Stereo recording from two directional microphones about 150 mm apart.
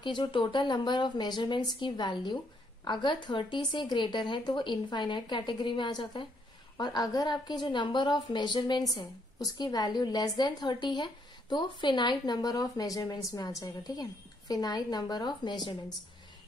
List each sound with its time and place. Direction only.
0.0 s a woman's voice: 30° left (ahead or behind)